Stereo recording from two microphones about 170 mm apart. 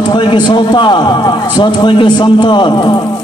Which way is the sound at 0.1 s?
30° left (ahead or behind).